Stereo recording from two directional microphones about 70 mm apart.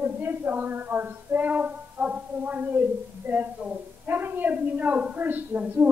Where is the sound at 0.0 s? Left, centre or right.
Right.